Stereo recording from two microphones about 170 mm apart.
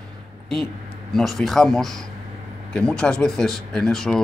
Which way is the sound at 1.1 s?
Centre (ahead or behind).